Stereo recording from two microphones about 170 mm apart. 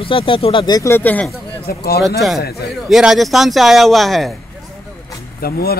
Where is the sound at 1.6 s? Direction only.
65° left (ahead or behind).